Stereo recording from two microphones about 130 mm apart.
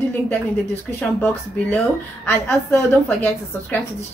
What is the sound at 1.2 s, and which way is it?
Speech, 15° left (ahead or behind).